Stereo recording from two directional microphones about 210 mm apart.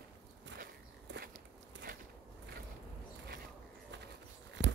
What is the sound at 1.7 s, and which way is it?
Walk, 60° right (ahead or behind).